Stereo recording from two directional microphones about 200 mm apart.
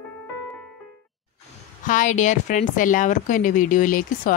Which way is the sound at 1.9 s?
40° left (ahead or behind).